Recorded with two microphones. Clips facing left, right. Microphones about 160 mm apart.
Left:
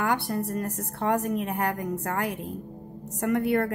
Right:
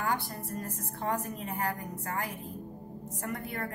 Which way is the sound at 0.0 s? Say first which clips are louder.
Left 7 dB; 70° left (ahead or behind).